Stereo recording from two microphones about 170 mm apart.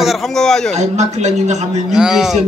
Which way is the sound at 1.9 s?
5° right (ahead or behind).